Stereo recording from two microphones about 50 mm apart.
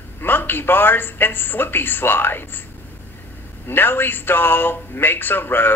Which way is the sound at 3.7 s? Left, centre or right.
Left.